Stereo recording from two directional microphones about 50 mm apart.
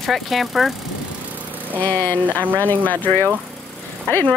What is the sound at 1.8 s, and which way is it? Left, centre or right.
Speech, left.